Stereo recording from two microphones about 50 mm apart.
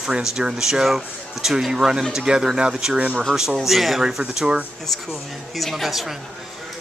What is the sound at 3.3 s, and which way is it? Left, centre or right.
Speech, centre.